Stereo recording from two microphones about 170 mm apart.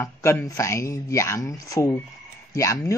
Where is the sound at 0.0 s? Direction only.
15° left (ahead or behind).